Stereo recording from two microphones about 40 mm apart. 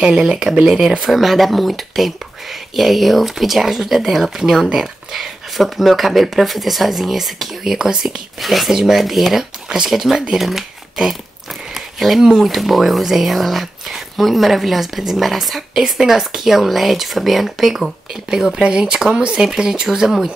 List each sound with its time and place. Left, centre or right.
0.2 s speech: centre
11.7 s a sound: centre
12.4 s speech: centre
18.6 s speech: centre